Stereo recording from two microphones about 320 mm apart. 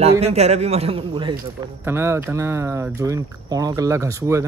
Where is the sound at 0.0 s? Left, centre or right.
Centre.